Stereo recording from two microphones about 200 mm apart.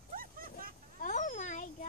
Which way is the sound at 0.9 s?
40° left (ahead or behind).